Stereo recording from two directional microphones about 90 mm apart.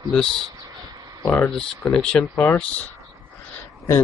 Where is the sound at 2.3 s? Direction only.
20° left (ahead or behind).